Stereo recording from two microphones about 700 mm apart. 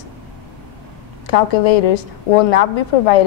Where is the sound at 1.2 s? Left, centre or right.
Left.